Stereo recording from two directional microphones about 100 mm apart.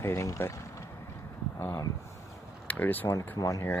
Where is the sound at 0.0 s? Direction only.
30° left (ahead or behind).